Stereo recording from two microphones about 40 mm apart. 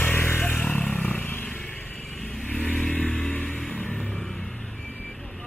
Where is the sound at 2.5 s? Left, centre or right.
Left.